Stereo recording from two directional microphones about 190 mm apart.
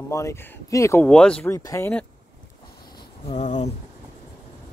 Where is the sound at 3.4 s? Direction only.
40° left (ahead or behind).